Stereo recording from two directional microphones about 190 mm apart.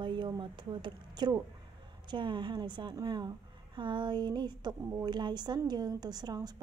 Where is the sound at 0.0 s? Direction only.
25° right (ahead or behind).